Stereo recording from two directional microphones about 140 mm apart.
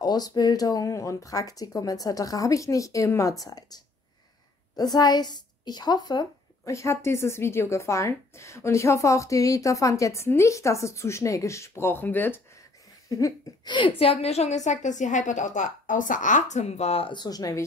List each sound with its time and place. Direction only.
0.0 s a woman's voice: 30° left (ahead or behind)
13.1 s a woman's voice: 30° left (ahead or behind)